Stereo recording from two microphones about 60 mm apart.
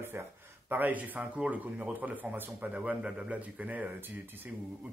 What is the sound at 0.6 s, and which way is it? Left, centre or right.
A man's voice, right.